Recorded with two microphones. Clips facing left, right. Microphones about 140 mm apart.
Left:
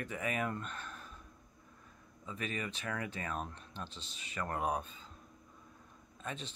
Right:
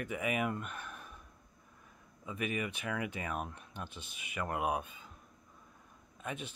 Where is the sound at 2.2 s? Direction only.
15° right (ahead or behind).